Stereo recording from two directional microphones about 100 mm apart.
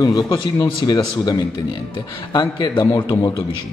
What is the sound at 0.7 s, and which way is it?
Speech, 45° left (ahead or behind).